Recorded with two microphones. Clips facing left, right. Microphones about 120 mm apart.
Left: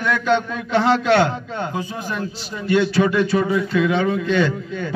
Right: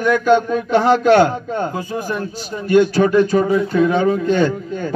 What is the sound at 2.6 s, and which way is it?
A man's voice, 45° right (ahead or behind).